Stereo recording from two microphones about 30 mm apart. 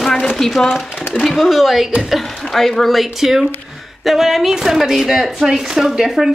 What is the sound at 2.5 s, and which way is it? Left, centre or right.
A woman's voice, centre.